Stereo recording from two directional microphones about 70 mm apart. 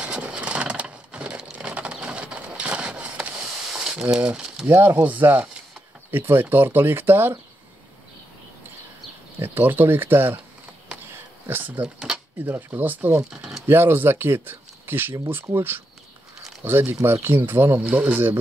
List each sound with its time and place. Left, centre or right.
0.0 s a sound: centre
4.2 s speech: centre
9.4 s speech: right
11.4 s speech: right
13.2 s a sound: centre
13.7 s speech: right